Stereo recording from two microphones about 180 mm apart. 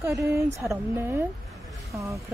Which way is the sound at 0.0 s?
15° right (ahead or behind).